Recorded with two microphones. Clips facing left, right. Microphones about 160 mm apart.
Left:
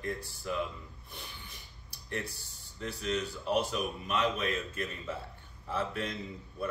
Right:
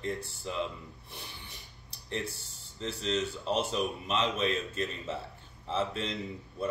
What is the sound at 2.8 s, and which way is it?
A man's voice, 25° right (ahead or behind).